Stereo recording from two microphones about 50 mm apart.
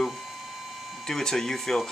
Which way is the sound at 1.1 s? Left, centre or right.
Centre.